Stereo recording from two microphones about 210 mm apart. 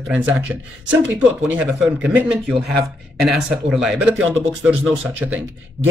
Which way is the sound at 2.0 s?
5° right (ahead or behind).